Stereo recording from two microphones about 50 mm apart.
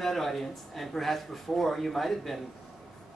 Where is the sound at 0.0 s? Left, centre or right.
Centre.